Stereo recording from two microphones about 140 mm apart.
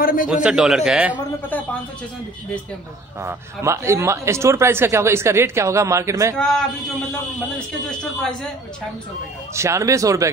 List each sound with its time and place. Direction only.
0.0 s a man's voice: 80° left
0.3 s a man's voice: 5° right (ahead or behind)
3.2 s speech: 20° right (ahead or behind)
6.3 s a man's voice: 5° left (ahead or behind)
9.6 s speech: 20° right (ahead or behind)